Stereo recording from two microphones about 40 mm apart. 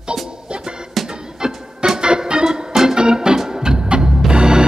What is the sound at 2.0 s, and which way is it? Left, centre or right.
Organ, right.